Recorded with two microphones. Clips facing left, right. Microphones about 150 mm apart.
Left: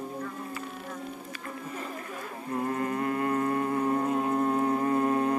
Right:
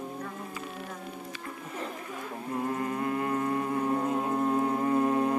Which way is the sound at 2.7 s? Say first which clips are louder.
Left 2 dB; 10° right (ahead or behind).